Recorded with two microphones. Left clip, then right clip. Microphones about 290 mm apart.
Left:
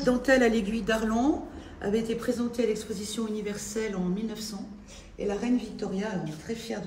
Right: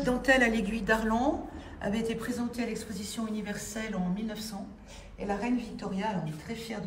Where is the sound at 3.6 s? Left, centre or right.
Centre.